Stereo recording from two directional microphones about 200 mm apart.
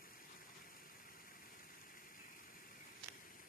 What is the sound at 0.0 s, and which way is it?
Water, 45° left (ahead or behind).